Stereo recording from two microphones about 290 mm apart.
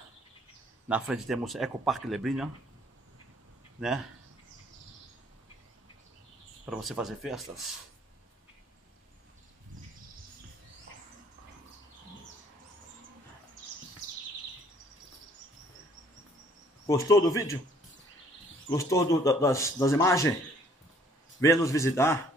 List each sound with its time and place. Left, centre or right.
0.8 s speech: centre
6.6 s speech: centre
16.8 s speech: centre
18.7 s speech: centre
21.4 s speech: centre